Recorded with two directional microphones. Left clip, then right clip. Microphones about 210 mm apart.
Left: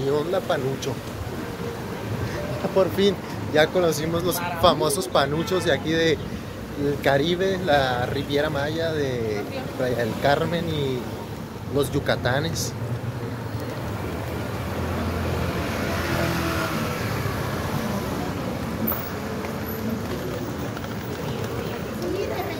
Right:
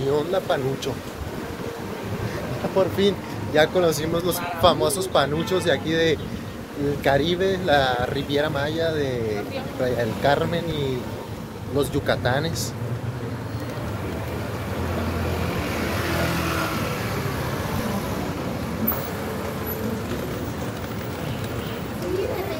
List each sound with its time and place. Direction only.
0.1 s speech: centre (ahead or behind)
2.8 s speech: 5° left (ahead or behind)
15.7 s vehicle: 45° right (ahead or behind)